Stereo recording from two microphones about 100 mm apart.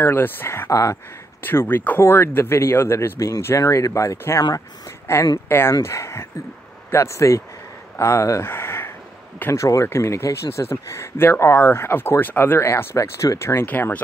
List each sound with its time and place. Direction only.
0.0 s speech: 20° left (ahead or behind)
1.4 s speech: 20° left (ahead or behind)